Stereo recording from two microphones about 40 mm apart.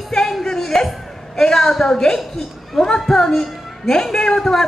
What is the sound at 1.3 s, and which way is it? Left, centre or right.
A woman's voice, centre.